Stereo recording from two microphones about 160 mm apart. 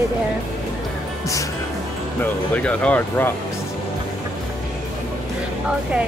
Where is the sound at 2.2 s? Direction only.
10° left (ahead or behind).